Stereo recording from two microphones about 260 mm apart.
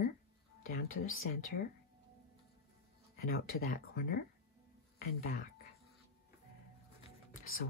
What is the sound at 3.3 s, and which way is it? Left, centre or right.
Speech, left.